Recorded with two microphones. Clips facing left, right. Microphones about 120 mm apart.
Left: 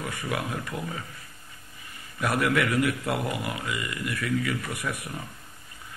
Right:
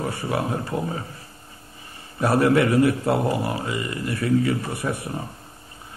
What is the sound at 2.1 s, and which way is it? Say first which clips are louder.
Speech: right 7 dB; 30° right (ahead or behind).